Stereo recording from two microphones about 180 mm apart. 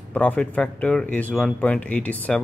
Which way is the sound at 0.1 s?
10° left (ahead or behind).